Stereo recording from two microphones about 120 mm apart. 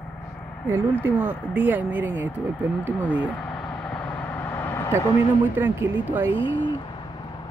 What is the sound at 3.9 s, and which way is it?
Vehicle, 10° left (ahead or behind).